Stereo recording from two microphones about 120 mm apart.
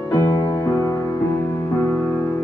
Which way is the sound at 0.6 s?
20° left (ahead or behind).